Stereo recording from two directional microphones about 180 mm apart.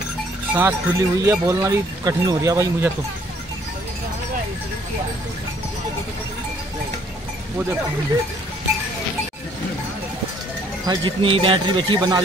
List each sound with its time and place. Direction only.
0.6 s speech: 15° right (ahead or behind)
10.9 s speech: 25° right (ahead or behind)